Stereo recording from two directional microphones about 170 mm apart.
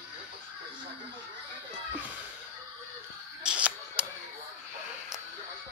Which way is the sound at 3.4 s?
5° right (ahead or behind).